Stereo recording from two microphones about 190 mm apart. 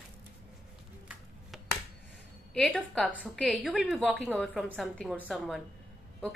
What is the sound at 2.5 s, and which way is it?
A woman's voice, 5° left (ahead or behind).